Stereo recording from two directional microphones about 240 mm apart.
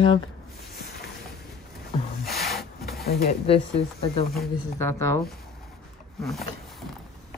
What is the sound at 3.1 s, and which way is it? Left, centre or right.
Speech, left.